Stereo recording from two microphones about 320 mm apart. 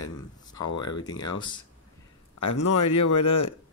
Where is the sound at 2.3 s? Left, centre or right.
Left.